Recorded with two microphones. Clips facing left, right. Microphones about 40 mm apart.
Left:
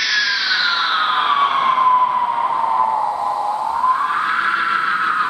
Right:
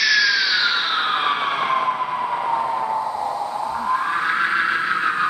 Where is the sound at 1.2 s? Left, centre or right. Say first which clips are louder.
Left 5 dB; centre.